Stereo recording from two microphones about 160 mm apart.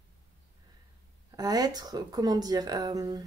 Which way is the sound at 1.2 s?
25° right (ahead or behind).